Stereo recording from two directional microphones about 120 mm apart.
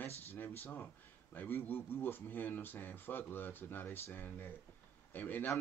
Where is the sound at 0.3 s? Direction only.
15° left (ahead or behind).